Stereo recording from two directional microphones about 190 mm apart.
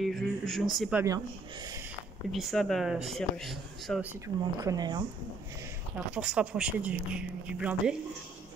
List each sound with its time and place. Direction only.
0.0 s speech: centre (ahead or behind)
1.0 s speech: 20° right (ahead or behind)
2.3 s speech: centre (ahead or behind)
4.1 s speech: 15° right (ahead or behind)
5.9 s speech: 5° right (ahead or behind)